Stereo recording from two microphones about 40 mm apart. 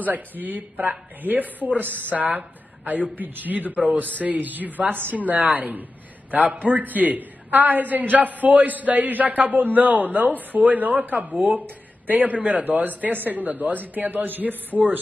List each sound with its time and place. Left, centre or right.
0.0 s a man's voice: right